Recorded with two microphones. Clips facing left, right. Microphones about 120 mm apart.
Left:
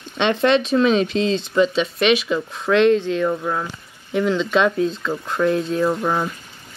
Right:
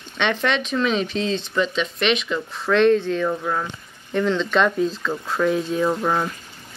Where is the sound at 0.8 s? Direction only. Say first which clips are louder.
Left 4 dB; 35° left (ahead or behind).